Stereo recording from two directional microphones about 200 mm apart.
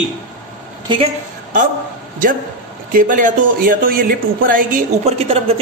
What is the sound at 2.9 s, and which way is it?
Speech, 40° right (ahead or behind).